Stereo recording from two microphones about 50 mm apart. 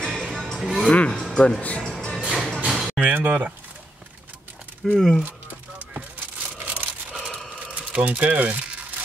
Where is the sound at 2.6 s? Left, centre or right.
Centre.